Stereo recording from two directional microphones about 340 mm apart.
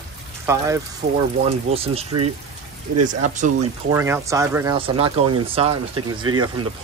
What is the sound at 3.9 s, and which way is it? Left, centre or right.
Speech, centre.